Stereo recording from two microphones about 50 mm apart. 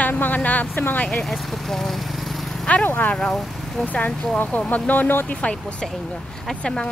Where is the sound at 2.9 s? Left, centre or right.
Left.